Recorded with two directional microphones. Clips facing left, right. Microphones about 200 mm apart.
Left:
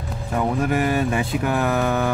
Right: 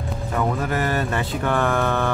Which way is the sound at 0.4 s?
15° left (ahead or behind).